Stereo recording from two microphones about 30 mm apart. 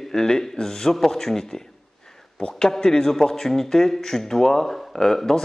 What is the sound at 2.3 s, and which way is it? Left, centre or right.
A man's voice, left.